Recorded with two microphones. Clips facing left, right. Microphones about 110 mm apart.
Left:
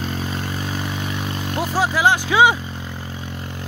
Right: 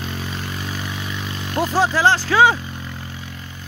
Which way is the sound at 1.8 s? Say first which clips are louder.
Right 1 dB; 10° left (ahead or behind).